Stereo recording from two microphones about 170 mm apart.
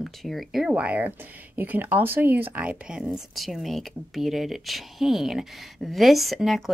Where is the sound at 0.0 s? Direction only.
Centre (ahead or behind).